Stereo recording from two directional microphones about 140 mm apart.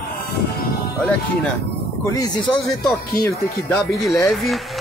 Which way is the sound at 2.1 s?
25° left (ahead or behind).